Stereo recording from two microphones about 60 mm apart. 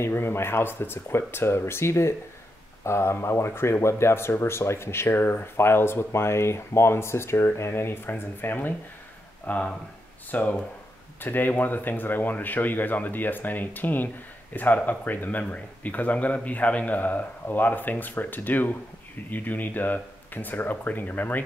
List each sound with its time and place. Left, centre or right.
0.0 s speech: left